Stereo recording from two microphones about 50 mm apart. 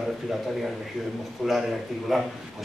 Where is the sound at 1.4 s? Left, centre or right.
Centre.